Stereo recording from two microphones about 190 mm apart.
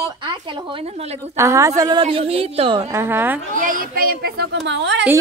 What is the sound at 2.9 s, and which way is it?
Speech, 10° right (ahead or behind).